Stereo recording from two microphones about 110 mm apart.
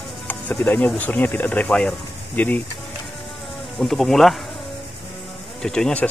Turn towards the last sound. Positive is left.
turn(degrees=5)  # may be behind; listen again after turning